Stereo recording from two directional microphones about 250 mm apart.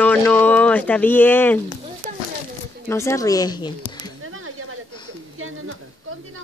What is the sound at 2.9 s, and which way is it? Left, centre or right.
Speech, centre.